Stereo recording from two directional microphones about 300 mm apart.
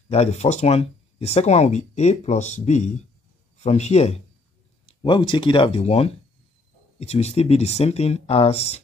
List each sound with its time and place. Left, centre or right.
0.1 s speech: left